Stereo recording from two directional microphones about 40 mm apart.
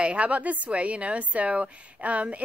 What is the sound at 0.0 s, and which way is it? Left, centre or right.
A woman's voice, right.